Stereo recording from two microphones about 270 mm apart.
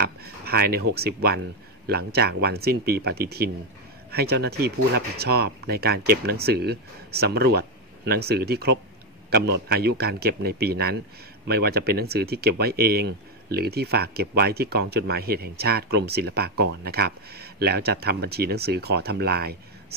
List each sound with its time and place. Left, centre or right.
0.0 s speech: right